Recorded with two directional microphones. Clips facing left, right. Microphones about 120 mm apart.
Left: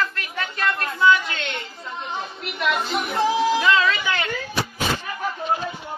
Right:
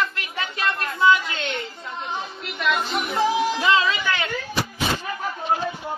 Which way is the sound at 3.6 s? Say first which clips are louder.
Left 1 dB; 30° right (ahead or behind).